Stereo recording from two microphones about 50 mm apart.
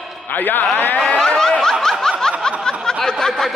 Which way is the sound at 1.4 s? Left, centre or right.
Centre.